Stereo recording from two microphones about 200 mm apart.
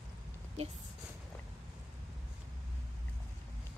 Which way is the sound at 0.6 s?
35° right (ahead or behind).